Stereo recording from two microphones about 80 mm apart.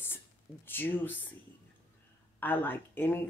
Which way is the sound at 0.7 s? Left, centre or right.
Left.